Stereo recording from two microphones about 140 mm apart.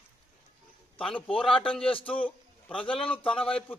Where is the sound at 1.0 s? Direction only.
10° left (ahead or behind).